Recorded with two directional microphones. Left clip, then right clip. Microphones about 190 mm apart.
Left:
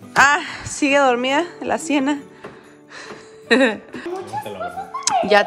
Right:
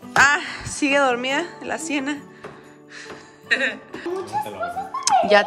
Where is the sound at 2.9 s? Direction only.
10° left (ahead or behind).